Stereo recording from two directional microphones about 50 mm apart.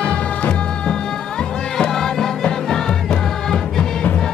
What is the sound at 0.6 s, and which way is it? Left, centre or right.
Music, centre.